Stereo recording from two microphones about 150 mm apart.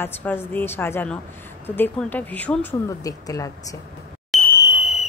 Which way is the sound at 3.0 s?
20° left (ahead or behind).